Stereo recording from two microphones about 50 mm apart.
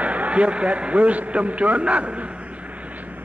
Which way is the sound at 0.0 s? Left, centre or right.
Right.